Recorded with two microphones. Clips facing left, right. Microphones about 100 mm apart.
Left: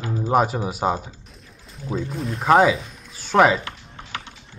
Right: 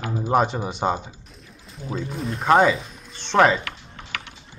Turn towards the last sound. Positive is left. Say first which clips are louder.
# left 1 dB
turn(degrees=30)  # may be behind; listen again after turning